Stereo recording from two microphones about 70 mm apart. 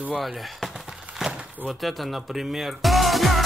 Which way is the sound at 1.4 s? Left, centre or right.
Centre.